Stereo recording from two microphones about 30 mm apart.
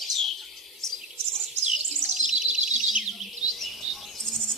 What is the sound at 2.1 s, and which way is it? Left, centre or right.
Bird, centre.